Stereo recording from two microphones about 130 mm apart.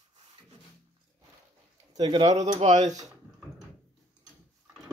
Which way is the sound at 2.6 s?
60° right (ahead or behind).